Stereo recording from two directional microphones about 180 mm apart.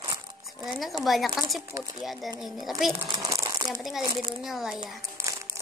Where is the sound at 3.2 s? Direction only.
20° right (ahead or behind).